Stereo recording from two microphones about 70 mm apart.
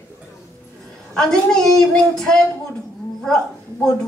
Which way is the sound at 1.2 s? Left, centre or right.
Centre.